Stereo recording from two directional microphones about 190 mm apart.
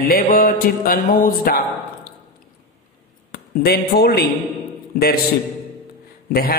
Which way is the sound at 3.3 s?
55° left (ahead or behind).